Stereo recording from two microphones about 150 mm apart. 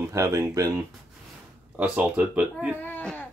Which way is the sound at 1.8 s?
10° right (ahead or behind).